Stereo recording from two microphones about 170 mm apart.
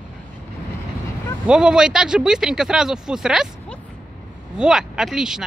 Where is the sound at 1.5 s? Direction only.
5° right (ahead or behind).